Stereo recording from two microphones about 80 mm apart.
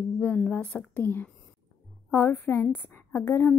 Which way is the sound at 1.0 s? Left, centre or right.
Left.